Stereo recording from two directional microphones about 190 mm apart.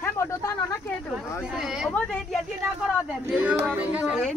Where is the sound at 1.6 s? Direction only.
Centre (ahead or behind).